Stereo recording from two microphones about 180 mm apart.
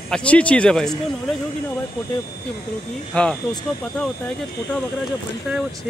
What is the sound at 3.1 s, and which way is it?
Speech, 5° left (ahead or behind).